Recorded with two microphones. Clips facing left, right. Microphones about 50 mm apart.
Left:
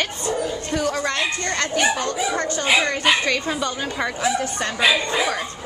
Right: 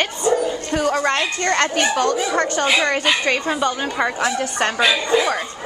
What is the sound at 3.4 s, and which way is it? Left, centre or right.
Speech, right.